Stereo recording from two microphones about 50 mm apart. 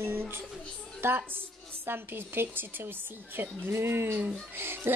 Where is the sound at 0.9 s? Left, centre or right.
Right.